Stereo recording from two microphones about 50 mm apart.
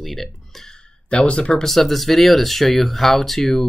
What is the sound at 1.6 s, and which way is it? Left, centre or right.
Speech, centre.